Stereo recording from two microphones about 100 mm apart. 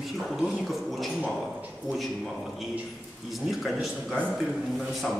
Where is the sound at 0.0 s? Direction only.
5° right (ahead or behind).